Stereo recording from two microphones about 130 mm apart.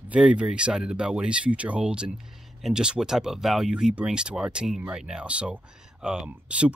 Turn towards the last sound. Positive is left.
turn(degrees=-10)  # may be behind; listen again after turning